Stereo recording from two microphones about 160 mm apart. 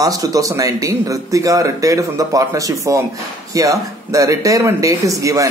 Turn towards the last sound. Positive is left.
turn(degrees=-20)  # may be behind; listen again after turning